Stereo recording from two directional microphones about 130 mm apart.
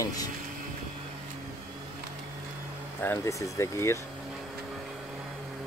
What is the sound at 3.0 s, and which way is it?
Speech, 20° left (ahead or behind).